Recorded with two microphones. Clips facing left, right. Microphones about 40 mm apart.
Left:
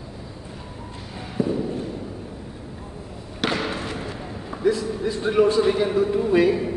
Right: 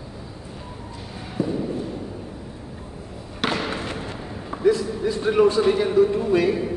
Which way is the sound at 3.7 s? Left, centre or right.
Right.